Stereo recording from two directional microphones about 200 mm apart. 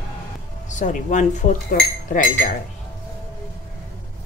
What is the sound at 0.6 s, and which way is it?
Speech, 40° left (ahead or behind).